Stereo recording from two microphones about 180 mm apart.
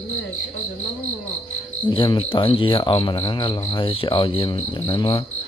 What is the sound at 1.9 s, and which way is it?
Speech, 30° left (ahead or behind).